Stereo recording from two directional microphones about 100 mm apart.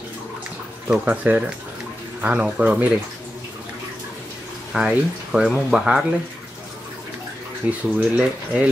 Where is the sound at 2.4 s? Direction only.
15° right (ahead or behind).